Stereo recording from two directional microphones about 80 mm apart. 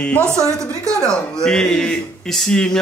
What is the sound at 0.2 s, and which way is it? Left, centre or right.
Speech, right.